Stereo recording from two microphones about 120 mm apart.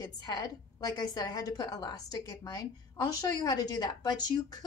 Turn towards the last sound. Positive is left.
turn(degrees=35)  # may be behind; listen again after turning